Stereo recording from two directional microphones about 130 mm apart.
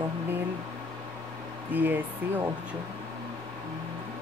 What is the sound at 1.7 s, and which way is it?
Speech, 15° right (ahead or behind).